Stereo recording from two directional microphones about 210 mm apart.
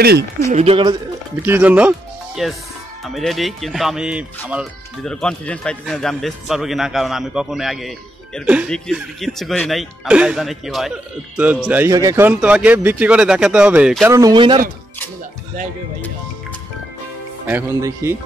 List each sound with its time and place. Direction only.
0.5 s speech: 30° right (ahead or behind)
1.4 s speech: 10° right (ahead or behind)
14.1 s speech: 20° right (ahead or behind)
17.5 s speech: 10° right (ahead or behind)